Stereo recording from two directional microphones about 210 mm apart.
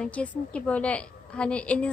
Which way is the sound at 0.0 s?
5° left (ahead or behind).